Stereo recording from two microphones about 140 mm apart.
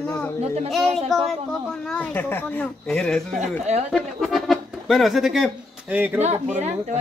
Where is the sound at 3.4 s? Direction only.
55° right (ahead or behind).